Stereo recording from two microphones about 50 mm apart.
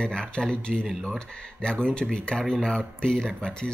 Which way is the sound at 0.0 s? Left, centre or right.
Centre.